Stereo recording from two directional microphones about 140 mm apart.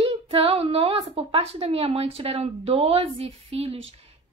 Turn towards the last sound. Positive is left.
turn(degrees=-45)  # may be behind; listen again after turning